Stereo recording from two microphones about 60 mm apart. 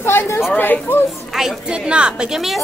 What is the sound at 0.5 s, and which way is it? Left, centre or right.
Speech, left.